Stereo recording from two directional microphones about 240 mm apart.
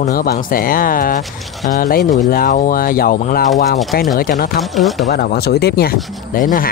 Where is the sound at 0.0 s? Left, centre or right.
Left.